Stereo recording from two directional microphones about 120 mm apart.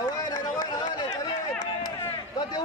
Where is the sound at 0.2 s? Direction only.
35° left (ahead or behind).